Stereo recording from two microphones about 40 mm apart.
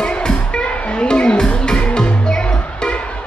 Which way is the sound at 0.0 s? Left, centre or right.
Left.